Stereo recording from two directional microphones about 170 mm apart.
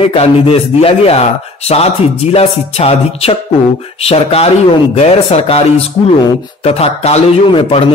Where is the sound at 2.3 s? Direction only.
35° left (ahead or behind).